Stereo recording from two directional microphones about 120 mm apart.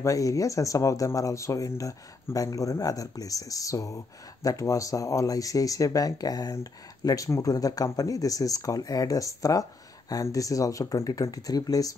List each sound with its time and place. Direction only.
0.0 s speech: 25° left (ahead or behind)